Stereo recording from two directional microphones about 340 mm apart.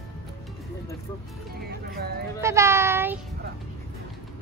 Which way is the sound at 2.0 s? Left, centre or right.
Right.